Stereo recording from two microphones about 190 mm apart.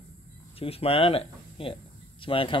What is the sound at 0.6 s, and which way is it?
Speech, 30° left (ahead or behind).